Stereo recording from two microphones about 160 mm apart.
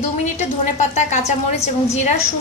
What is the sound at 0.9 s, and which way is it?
A woman's voice, 45° left (ahead or behind).